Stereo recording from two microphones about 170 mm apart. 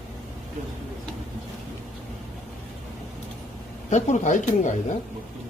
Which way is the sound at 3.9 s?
45° left (ahead or behind).